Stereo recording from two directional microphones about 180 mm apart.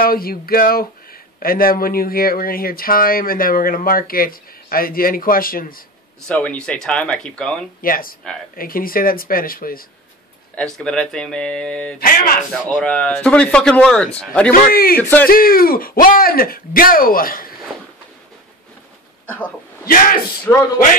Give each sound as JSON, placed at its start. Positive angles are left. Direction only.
{"t": 0.0, "sound": "speech", "side_deg": 55}
{"t": 6.2, "sound": "speech", "side_deg": 5}
{"t": 7.8, "sound": "speech", "side_deg": 50}
{"t": 10.5, "sound": "speech", "side_deg": 5}
{"t": 14.5, "sound": "a man's voice", "side_deg": 55}
{"t": 15.0, "sound": "speech", "side_deg": 10}
{"t": 15.2, "sound": "speech", "side_deg": 55}
{"t": 19.3, "sound": "speech", "side_deg": 10}
{"t": 19.9, "sound": "speech", "side_deg": 50}
{"t": 20.5, "sound": "speech", "side_deg": 15}